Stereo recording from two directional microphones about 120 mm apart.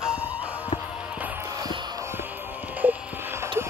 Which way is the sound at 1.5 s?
35° right (ahead or behind).